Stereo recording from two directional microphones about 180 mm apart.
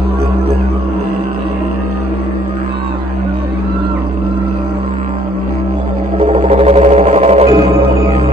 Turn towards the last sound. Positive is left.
turn(degrees=-35)  # may be behind; listen again after turning